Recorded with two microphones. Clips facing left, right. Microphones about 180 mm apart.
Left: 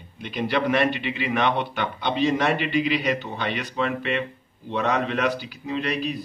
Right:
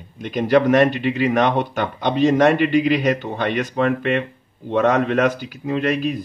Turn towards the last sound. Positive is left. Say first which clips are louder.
# right 6 dB
turn(degrees=-50)  # may be behind; listen again after turning